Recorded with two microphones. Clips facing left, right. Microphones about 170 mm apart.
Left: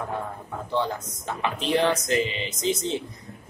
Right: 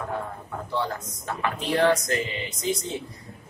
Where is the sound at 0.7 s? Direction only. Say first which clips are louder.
Left 2 dB; 20° left (ahead or behind).